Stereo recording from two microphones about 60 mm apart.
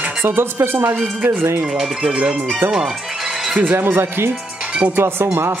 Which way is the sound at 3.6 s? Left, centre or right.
Right.